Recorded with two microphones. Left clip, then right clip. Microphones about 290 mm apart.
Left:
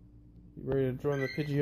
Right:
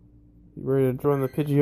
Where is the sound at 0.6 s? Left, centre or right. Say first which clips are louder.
Right 8 dB; centre.